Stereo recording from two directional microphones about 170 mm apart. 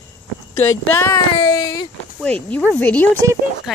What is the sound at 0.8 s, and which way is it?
Speech, 15° left (ahead or behind).